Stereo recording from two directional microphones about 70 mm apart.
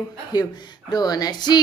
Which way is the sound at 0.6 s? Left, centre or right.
Left.